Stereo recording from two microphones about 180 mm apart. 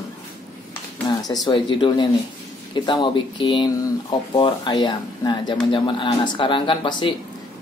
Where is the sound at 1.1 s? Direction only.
20° left (ahead or behind).